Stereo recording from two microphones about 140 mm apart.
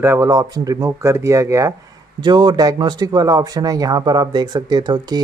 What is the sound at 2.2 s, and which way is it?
Speech, 30° right (ahead or behind).